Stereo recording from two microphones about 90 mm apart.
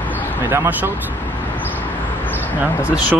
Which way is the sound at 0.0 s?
20° left (ahead or behind).